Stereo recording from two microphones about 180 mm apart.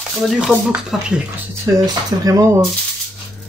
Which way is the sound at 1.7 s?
20° right (ahead or behind).